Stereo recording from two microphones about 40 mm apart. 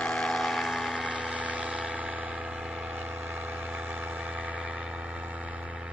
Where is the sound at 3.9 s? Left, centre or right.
Right.